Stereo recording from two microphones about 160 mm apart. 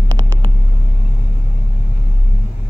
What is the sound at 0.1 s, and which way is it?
Vehicle, 20° right (ahead or behind).